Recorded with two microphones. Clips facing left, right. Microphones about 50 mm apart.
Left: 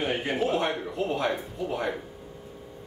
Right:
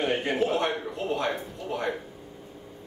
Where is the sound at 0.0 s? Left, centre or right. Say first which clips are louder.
Right 1 dB; centre.